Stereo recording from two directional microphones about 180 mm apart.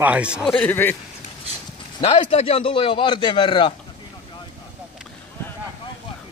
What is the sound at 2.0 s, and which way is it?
A man's voice, 35° left (ahead or behind).